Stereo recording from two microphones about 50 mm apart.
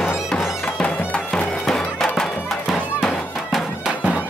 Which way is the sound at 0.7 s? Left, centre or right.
Left.